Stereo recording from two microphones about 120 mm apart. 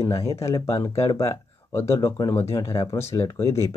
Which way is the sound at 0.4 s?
25° left (ahead or behind).